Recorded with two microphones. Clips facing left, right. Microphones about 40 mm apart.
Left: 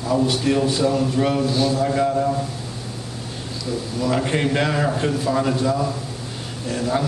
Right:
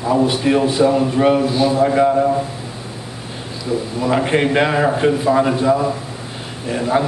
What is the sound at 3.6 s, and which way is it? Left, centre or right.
A man's voice, right.